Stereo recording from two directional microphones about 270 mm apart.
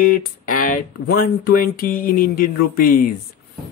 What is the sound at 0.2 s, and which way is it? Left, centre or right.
Speech, left.